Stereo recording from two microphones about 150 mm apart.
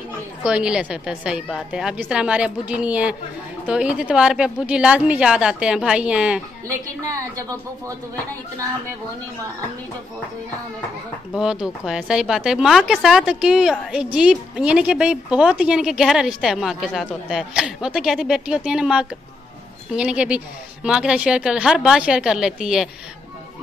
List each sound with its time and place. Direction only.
0.4 s a woman's voice: 5° right (ahead or behind)
11.3 s speech: 5° right (ahead or behind)